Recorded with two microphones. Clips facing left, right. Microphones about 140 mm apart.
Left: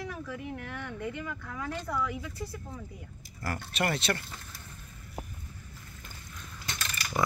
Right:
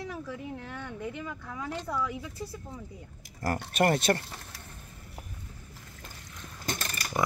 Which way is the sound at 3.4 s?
45° right (ahead or behind).